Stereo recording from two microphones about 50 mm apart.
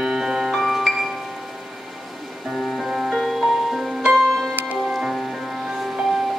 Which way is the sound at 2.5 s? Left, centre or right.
Centre.